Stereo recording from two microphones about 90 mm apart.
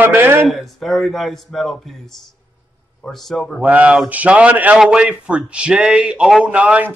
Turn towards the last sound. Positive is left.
turn(degrees=-15)  # may be behind; listen again after turning